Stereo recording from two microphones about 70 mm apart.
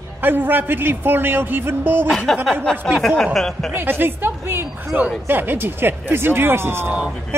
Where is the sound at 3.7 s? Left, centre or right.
Right.